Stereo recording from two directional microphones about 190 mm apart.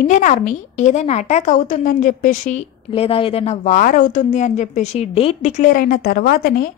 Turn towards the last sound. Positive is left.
turn(degrees=50)  # may be behind; listen again after turning